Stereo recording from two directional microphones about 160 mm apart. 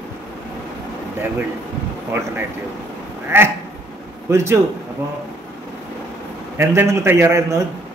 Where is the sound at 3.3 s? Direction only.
15° right (ahead or behind).